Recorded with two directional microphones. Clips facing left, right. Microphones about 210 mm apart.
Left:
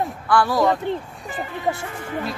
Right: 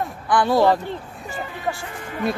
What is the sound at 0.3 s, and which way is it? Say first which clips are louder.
Speech: right 1 dB; 20° right (ahead or behind).